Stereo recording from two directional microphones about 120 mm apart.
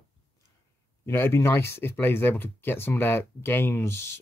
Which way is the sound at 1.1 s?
20° left (ahead or behind).